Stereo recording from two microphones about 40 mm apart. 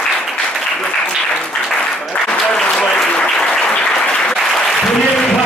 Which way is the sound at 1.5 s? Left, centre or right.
Centre.